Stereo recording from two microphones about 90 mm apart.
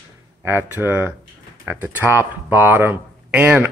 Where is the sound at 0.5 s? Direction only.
25° right (ahead or behind).